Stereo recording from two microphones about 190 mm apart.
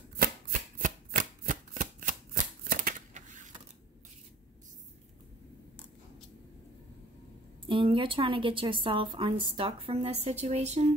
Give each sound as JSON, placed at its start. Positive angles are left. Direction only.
{"t": 0.2, "sound": "shuffling cards", "side_deg": -45}
{"t": 7.6, "sound": "a woman's voice", "side_deg": -25}